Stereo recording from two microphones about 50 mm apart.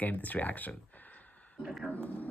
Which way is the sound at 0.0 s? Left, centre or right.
Left.